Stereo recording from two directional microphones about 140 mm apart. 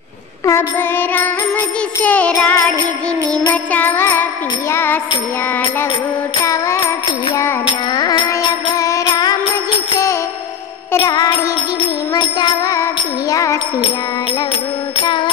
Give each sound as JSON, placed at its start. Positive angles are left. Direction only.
{"t": 0.5, "sound": "music", "side_deg": 15}
{"t": 3.7, "sound": "music", "side_deg": 15}
{"t": 6.4, "sound": "music", "side_deg": 20}
{"t": 7.6, "sound": "music", "side_deg": 30}
{"t": 11.1, "sound": "music", "side_deg": 30}
{"t": 15.0, "sound": "music", "side_deg": 35}